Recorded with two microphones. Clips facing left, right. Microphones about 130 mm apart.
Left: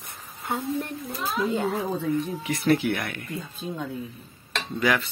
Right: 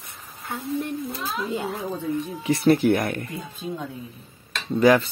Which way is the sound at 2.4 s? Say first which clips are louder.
Right 8 dB; 30° right (ahead or behind).